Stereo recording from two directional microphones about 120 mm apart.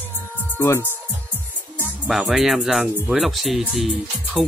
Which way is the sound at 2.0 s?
Centre (ahead or behind).